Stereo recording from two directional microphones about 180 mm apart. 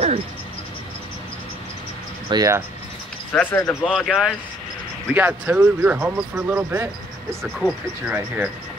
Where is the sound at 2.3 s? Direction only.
20° right (ahead or behind).